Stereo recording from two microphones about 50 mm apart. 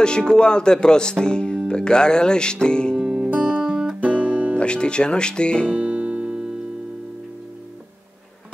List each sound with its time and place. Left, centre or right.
0.0 s speech: centre
3.0 s music: centre
3.3 s music: right
4.6 s speech: centre
5.7 s music: right